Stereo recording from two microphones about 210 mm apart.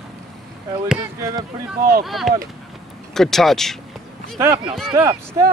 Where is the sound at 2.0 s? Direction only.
Centre (ahead or behind).